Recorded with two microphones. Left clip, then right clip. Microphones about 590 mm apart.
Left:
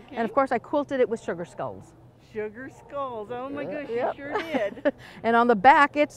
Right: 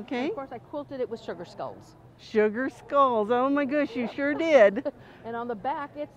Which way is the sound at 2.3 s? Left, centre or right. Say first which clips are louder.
Right 9 dB; right.